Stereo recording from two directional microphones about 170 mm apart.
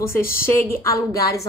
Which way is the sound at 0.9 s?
20° left (ahead or behind).